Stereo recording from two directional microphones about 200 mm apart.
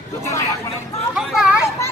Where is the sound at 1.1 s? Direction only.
5° right (ahead or behind).